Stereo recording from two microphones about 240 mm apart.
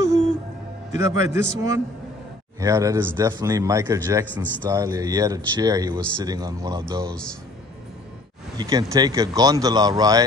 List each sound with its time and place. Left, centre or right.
0.9 s a man's voice: centre
8.5 s a man's voice: centre